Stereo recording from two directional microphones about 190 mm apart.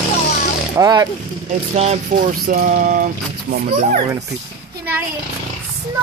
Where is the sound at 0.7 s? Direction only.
20° right (ahead or behind).